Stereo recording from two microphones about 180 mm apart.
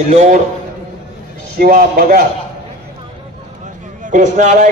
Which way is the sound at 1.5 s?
55° right (ahead or behind).